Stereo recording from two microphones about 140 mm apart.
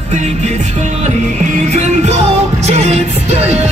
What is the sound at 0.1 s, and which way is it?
Music, 55° right (ahead or behind).